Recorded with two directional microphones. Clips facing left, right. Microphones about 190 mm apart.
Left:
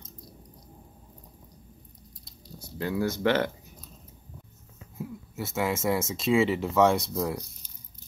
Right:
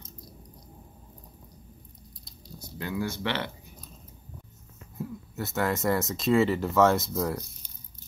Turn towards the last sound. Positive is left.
turn(degrees=0)  # may be behind; listen again after turning